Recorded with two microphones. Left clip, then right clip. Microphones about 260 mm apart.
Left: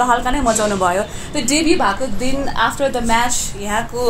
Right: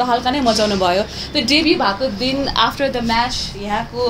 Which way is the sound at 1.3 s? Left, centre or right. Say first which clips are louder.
Right 1 dB; centre.